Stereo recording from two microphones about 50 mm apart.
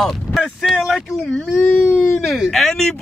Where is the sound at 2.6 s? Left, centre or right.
Centre.